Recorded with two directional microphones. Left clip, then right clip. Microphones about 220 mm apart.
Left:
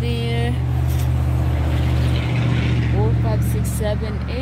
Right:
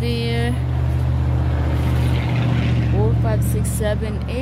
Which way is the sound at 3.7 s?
10° right (ahead or behind).